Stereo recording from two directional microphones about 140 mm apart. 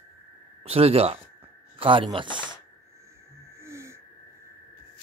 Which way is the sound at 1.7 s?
40° right (ahead or behind).